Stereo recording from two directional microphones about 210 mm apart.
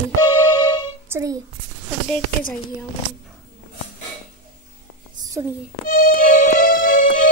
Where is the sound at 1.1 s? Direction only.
15° right (ahead or behind).